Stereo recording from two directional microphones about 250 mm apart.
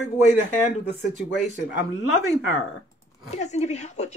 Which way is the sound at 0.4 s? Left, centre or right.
Left.